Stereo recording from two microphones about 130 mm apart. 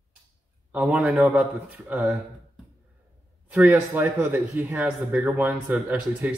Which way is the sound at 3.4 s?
10° right (ahead or behind).